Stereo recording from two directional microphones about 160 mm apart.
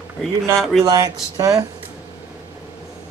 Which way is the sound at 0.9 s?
25° right (ahead or behind).